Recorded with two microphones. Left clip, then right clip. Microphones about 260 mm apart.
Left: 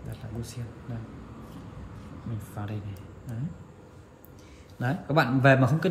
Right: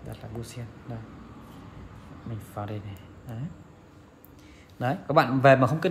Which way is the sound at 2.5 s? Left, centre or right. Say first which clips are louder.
Right 5 dB; right.